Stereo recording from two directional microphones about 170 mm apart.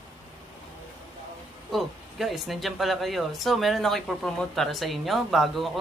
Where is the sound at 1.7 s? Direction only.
Centre (ahead or behind).